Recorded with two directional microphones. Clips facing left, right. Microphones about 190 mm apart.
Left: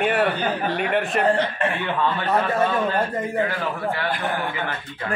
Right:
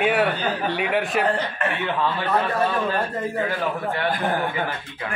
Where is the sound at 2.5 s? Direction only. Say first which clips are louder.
Left 1 dB; 20° left (ahead or behind).